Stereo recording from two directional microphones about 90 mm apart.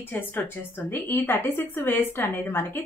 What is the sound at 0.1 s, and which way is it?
A woman's voice, 20° left (ahead or behind).